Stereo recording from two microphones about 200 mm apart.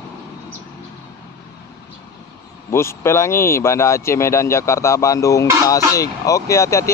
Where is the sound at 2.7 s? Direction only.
15° left (ahead or behind).